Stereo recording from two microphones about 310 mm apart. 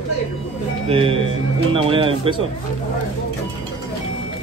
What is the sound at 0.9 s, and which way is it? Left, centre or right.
Speech, centre.